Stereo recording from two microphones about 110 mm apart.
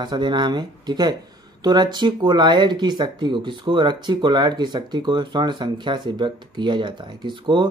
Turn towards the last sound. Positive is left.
turn(degrees=-45)  # may be behind; listen again after turning